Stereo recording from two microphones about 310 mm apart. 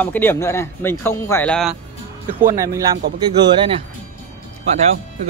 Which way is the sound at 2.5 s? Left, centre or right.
Centre.